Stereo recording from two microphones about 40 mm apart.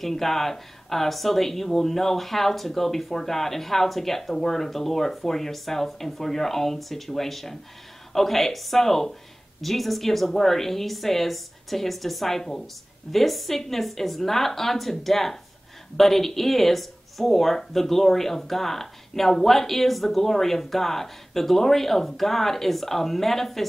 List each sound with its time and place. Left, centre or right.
0.0 s a woman's voice: centre